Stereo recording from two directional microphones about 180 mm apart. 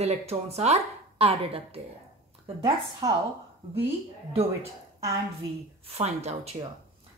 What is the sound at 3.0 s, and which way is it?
Speech, 20° right (ahead or behind).